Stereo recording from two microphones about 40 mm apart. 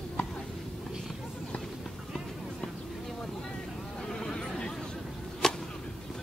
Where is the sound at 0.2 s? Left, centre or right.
Left.